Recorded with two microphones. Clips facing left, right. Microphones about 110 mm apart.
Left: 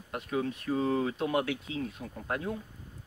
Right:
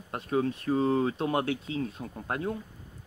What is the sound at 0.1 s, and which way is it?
Speech, 35° right (ahead or behind).